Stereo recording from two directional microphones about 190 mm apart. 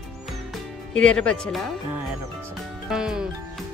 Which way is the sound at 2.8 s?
5° right (ahead or behind).